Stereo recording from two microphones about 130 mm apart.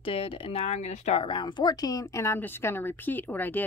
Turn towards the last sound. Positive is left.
turn(degrees=15)  # may be behind; listen again after turning